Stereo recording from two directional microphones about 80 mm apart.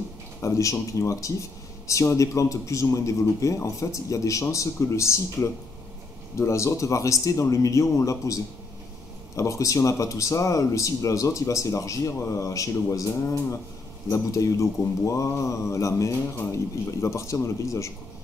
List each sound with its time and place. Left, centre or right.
0.4 s speech: left